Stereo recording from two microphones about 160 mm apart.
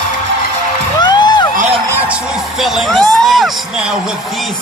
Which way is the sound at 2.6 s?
Centre (ahead or behind).